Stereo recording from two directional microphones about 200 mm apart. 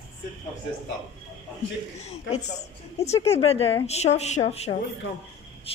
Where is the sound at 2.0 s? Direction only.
35° left (ahead or behind).